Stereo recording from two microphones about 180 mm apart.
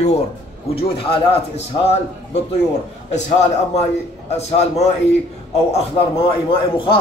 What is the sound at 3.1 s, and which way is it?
A man's voice, 40° left (ahead or behind).